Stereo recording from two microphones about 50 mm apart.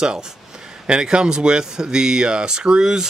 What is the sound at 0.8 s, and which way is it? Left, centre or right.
Speech, centre.